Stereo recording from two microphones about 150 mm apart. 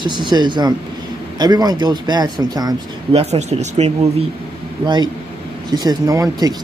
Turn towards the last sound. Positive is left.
turn(degrees=-25)  # may be behind; listen again after turning